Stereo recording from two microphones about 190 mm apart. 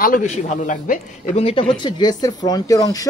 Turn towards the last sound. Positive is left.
turn(degrees=20)  # may be behind; listen again after turning